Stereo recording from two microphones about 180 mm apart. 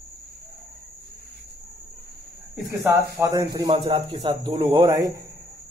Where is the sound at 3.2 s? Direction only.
20° right (ahead or behind).